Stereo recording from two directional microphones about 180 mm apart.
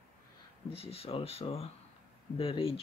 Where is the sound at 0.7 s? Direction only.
35° left (ahead or behind).